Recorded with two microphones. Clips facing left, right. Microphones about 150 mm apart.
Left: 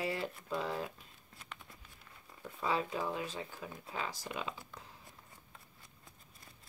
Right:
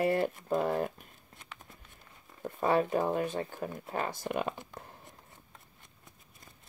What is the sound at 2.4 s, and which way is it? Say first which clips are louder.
Speech: right 8 dB; 50° right (ahead or behind).